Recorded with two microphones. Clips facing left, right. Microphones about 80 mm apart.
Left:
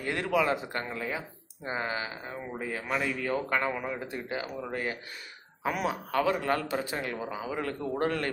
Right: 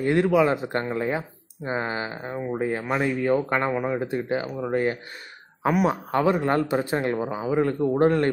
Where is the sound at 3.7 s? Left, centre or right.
Centre.